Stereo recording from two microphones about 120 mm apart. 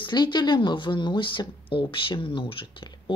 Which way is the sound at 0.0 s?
40° left (ahead or behind).